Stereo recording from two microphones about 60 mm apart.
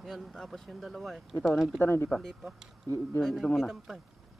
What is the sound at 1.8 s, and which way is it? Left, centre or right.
Speech, left.